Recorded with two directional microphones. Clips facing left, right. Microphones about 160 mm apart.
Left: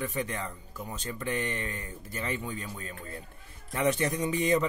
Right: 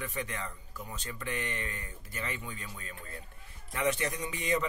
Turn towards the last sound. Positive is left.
turn(degrees=30)  # may be behind; listen again after turning